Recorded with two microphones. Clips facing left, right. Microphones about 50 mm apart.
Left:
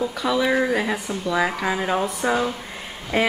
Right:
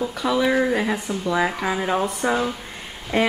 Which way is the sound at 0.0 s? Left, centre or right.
Centre.